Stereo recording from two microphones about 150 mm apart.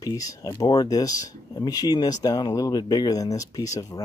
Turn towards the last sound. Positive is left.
turn(degrees=25)  # may be behind; listen again after turning